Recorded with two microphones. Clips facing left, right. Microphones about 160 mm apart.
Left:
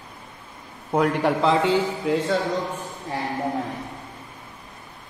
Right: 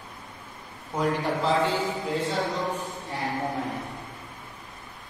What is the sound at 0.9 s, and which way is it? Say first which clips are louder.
Speech: left 6 dB; 70° left (ahead or behind).